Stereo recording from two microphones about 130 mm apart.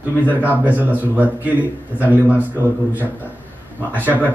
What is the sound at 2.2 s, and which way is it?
Speech, 15° left (ahead or behind).